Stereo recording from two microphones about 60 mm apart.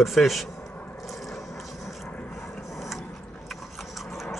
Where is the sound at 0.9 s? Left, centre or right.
Centre.